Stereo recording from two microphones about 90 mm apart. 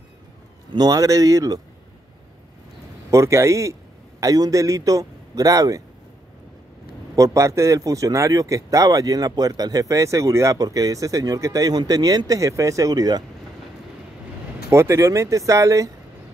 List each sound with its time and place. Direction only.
0.7 s a man's voice: 45° right (ahead or behind)
3.1 s a man's voice: 35° right (ahead or behind)
7.2 s a man's voice: 35° right (ahead or behind)
14.7 s a man's voice: 35° right (ahead or behind)